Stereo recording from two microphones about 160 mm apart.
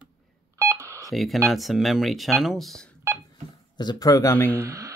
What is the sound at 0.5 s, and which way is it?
Telephone dialing, 15° right (ahead or behind).